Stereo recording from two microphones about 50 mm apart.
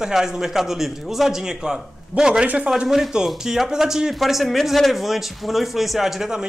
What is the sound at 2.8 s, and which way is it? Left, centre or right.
Speech, centre.